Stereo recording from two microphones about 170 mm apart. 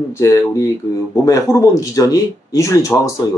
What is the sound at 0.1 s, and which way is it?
Speech, 20° left (ahead or behind).